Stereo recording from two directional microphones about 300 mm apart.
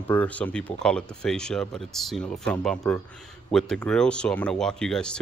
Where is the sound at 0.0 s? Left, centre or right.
Centre.